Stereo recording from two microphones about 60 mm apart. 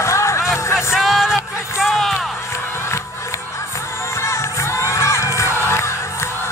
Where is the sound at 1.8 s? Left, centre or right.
Centre.